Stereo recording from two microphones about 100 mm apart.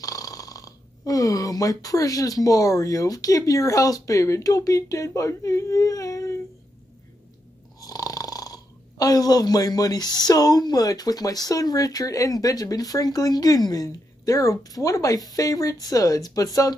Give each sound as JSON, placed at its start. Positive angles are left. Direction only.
{"t": 0.0, "sound": "speech", "side_deg": 35}
{"t": 7.8, "sound": "speech", "side_deg": 40}